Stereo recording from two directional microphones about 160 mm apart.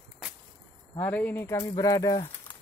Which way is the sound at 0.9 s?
10° left (ahead or behind).